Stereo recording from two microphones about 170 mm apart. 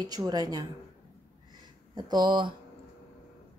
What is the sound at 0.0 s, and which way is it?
Speech, 20° right (ahead or behind).